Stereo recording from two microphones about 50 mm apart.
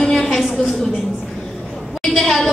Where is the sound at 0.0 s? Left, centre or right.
Centre.